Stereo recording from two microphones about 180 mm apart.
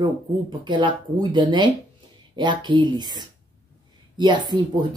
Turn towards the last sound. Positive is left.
turn(degrees=-25)  # may be behind; listen again after turning